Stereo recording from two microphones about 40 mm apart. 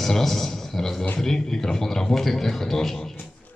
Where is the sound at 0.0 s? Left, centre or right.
Centre.